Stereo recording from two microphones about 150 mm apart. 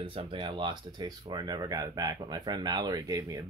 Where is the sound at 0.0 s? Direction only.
35° right (ahead or behind).